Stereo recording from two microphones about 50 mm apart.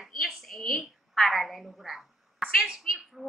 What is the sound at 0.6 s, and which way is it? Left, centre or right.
A woman's voice, centre.